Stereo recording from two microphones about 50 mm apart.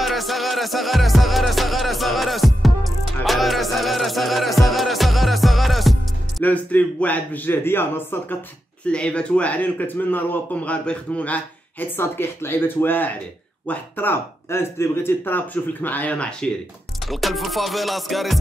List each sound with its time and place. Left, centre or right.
0.0 s music: centre
6.4 s speech: left
8.8 s speech: left
10.5 s speech: left
12.0 s speech: left
16.2 s speech: centre
17.0 s music: centre